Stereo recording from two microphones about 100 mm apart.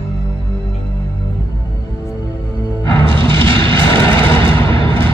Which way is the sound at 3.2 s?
60° right (ahead or behind).